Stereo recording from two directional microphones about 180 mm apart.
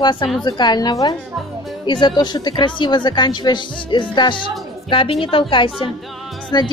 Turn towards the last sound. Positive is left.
turn(degrees=25)  # may be behind; listen again after turning